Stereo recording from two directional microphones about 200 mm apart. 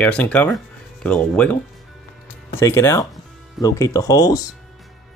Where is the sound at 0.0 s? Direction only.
5° left (ahead or behind).